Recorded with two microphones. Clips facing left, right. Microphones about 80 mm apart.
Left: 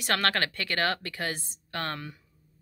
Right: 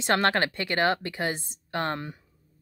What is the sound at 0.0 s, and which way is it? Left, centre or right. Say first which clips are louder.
Speech: right 4 dB; right.